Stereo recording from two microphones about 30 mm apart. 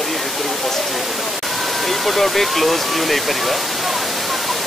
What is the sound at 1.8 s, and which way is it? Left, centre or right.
Speech, centre.